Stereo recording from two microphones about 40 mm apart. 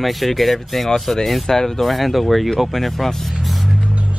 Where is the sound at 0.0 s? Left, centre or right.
Centre.